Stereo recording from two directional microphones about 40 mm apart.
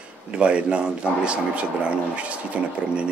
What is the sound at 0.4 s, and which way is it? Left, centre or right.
A man's voice, right.